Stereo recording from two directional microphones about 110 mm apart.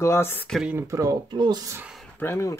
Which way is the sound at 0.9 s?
30° right (ahead or behind).